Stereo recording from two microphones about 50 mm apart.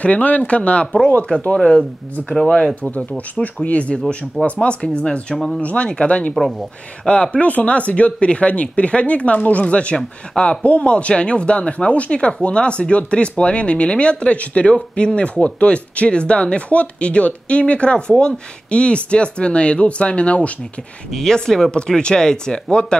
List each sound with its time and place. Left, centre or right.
0.0 s speech: left
1.5 s speech: centre
3.6 s speech: left
21.1 s speech: centre